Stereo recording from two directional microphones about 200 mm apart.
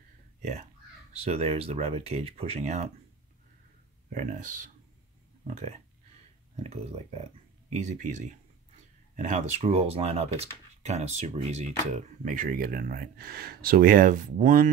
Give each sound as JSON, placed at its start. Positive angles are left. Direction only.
{"t": 0.4, "sound": "speech", "side_deg": -35}
{"t": 4.1, "sound": "speech", "side_deg": -40}